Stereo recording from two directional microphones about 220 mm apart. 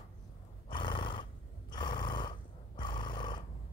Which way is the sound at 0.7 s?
20° left (ahead or behind).